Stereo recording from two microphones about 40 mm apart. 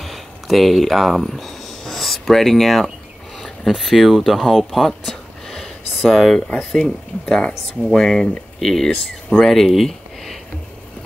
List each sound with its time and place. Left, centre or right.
0.0 s speech: centre
6.7 s speech: centre
9.8 s a sound: centre